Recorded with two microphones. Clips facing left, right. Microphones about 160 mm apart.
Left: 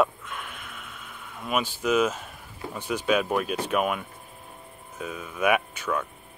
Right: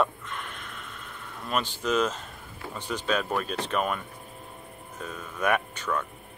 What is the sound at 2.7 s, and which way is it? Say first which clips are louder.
Speech: left 4 dB; 10° left (ahead or behind).